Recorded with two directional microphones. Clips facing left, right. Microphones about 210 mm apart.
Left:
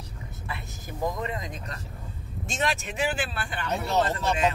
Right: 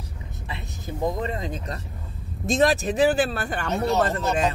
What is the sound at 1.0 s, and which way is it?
Speech, 30° right (ahead or behind).